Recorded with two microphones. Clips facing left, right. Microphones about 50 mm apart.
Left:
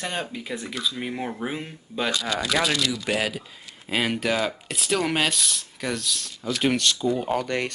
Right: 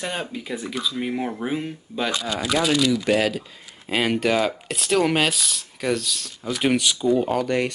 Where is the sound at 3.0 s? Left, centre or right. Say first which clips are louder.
Right 5 dB; centre.